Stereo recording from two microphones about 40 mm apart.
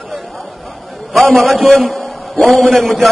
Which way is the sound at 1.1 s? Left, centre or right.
Centre.